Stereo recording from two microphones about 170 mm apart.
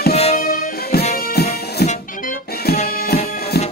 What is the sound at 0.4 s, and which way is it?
Music, 65° left (ahead or behind).